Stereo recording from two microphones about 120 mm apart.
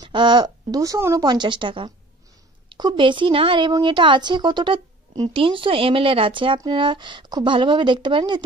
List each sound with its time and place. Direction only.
0.0 s speech: 40° right (ahead or behind)
1.2 s a woman's voice: 35° right (ahead or behind)